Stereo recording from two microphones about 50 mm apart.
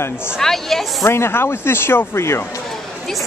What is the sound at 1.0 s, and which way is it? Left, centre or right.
A man's voice, left.